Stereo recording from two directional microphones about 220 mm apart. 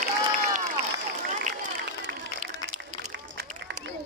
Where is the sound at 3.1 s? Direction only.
50° right (ahead or behind).